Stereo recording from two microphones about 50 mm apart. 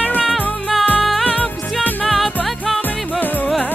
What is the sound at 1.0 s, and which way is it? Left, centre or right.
Music, centre.